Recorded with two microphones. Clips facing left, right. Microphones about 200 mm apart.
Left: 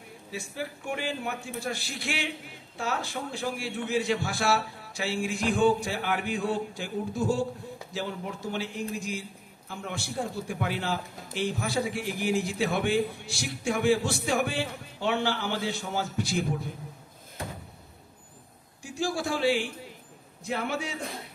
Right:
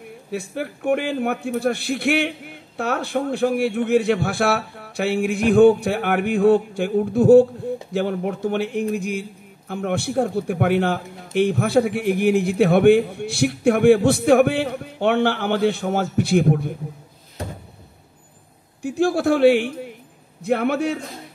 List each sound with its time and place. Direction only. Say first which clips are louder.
0.3 s a man's voice: right 8 dB; 60° right (ahead or behind)
18.8 s a man's voice: right 11 dB; 60° right (ahead or behind)